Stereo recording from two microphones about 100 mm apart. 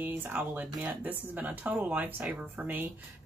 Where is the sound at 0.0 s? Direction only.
15° right (ahead or behind).